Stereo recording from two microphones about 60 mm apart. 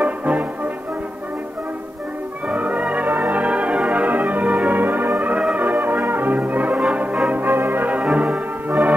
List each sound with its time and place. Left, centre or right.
0.0 s music: right
2.4 s music: right
5.6 s brass instrument: right
6.9 s music: right
7.2 s brass instrument: right